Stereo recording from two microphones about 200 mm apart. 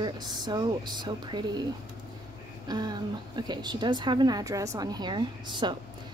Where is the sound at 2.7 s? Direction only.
20° right (ahead or behind).